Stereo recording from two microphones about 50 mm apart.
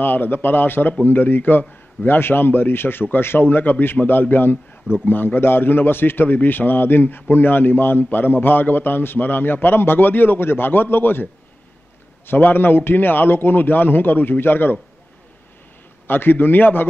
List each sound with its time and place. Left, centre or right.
0.0 s a man's voice: left
12.4 s a man's voice: left
16.1 s a man's voice: left